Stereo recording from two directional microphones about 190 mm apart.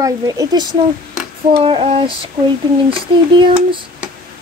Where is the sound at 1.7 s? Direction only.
30° right (ahead or behind).